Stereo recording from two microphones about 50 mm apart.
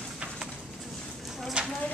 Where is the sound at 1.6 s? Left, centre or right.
Right.